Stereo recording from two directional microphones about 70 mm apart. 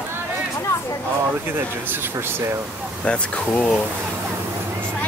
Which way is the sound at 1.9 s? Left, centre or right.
Right.